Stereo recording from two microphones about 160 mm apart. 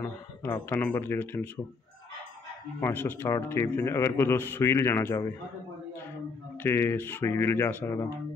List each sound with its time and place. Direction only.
0.0 s speech: 15° left (ahead or behind)
2.8 s a man's voice: 10° left (ahead or behind)
6.6 s a man's voice: 15° left (ahead or behind)